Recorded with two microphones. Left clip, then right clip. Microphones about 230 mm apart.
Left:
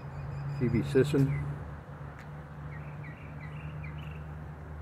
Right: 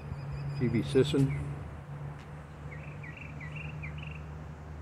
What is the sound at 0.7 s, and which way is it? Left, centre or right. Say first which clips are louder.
Speech: even; centre.